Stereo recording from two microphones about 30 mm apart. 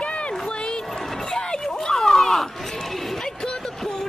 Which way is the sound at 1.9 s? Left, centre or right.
Centre.